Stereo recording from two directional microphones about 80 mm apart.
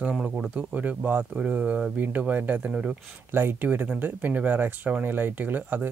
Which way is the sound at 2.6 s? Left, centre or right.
Centre.